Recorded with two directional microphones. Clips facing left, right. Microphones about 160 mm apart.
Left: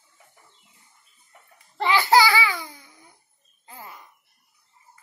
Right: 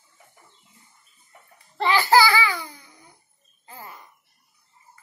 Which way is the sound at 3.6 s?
10° left (ahead or behind).